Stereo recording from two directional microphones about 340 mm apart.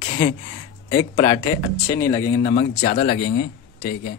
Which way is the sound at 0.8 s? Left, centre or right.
Centre.